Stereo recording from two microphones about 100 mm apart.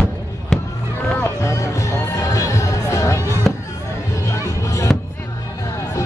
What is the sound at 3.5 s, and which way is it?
Music, 5° left (ahead or behind).